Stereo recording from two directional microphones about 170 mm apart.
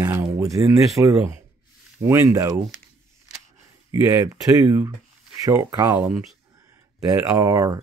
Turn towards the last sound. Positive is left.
turn(degrees=-20)  # may be behind; listen again after turning